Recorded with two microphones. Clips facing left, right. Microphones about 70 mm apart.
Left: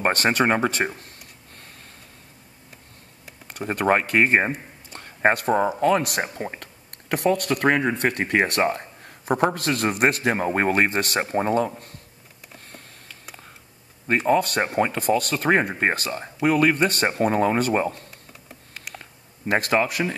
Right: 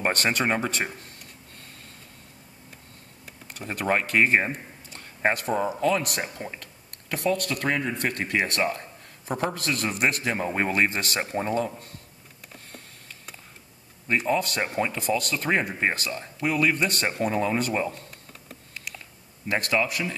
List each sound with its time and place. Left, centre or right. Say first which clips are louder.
0.0 s a man's voice: left 4 dB; left
3.7 s a man's voice: left 4 dB; left
7.1 s a man's voice: left 5 dB; left
12.5 s a sound: left 2 dB; left
14.0 s a man's voice: left 5 dB; left
19.7 s a man's voice: left 2 dB; left